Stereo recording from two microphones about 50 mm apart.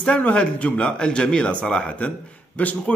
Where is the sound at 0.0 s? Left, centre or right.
Left.